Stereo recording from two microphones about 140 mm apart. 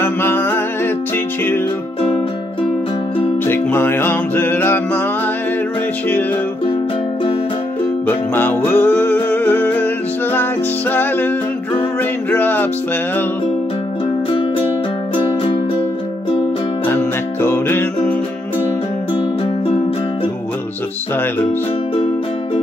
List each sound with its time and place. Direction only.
0.0 s music: 15° left (ahead or behind)
3.4 s music: 15° left (ahead or behind)
8.4 s music: 15° left (ahead or behind)
16.8 s music: 15° left (ahead or behind)